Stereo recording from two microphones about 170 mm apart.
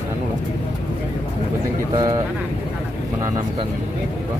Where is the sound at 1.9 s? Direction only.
20° right (ahead or behind).